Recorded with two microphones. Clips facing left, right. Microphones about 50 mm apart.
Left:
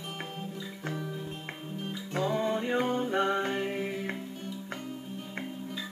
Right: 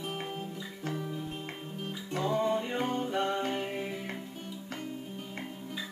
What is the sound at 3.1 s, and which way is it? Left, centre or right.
Music, left.